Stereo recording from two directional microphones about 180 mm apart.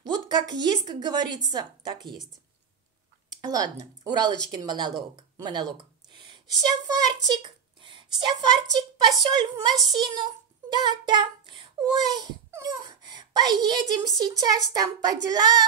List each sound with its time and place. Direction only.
0.0 s a woman's voice: 25° right (ahead or behind)
3.3 s a child's voice: 20° right (ahead or behind)
10.7 s child singing: 25° right (ahead or behind)
12.1 s a child's voice: 25° right (ahead or behind)